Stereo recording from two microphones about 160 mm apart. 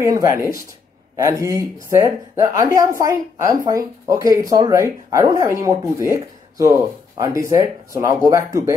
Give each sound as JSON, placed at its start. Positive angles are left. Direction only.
{"t": 0.0, "sound": "a woman's voice", "side_deg": -20}